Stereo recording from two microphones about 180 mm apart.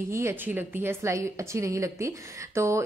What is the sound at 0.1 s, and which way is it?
A woman's voice, 15° right (ahead or behind).